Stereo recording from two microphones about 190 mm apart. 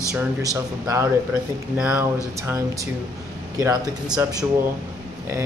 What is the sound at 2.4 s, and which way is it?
Speech, 15° right (ahead or behind).